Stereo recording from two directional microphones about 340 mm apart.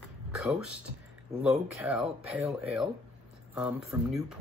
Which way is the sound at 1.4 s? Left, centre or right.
Centre.